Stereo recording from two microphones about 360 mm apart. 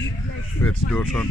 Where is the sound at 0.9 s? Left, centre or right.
Centre.